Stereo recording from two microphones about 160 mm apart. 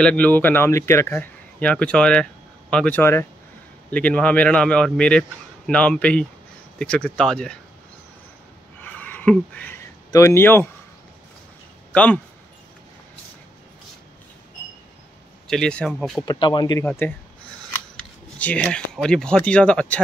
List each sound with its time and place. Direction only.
0.0 s speech: 10° left (ahead or behind)
8.8 s a sound: 10° left (ahead or behind)
10.1 s speech: 15° left (ahead or behind)
11.9 s speech: 10° left (ahead or behind)
15.4 s speech: 5° left (ahead or behind)
16.3 s speech: 30° left (ahead or behind)
16.8 s speech: 10° left (ahead or behind)